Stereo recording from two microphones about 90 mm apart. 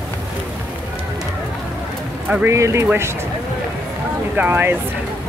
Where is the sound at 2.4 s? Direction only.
35° right (ahead or behind).